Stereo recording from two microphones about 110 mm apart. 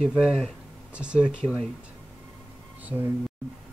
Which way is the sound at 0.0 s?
5° right (ahead or behind).